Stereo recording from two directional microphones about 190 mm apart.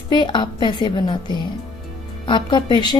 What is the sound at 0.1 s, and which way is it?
A woman's voice, 25° left (ahead or behind).